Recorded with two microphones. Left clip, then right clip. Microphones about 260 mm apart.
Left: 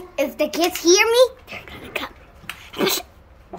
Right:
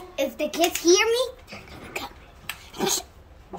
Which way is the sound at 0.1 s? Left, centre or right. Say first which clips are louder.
Left 5 dB; centre.